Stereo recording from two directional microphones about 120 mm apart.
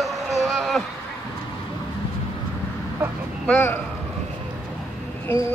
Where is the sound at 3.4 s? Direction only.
15° left (ahead or behind).